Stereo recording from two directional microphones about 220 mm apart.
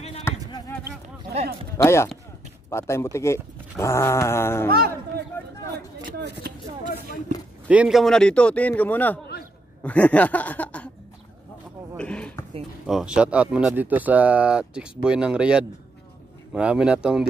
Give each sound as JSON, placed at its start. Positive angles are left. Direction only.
{"t": 0.2, "sound": "a sound", "side_deg": 15}
{"t": 1.9, "sound": "speech", "side_deg": 10}
{"t": 4.6, "sound": "a man's voice", "side_deg": -45}
{"t": 7.6, "sound": "speech", "side_deg": -5}
{"t": 12.0, "sound": "a sound", "side_deg": 5}
{"t": 12.8, "sound": "speech", "side_deg": -5}